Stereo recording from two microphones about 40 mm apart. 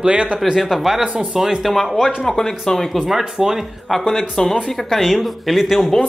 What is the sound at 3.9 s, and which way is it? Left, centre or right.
Speech, centre.